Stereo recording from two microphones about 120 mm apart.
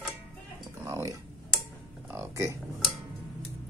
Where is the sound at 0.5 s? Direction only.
35° right (ahead or behind).